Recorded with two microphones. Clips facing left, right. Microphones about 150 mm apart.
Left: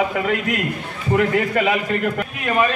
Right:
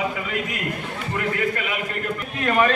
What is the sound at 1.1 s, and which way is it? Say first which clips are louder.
A man's voice: left 7 dB; 80° left.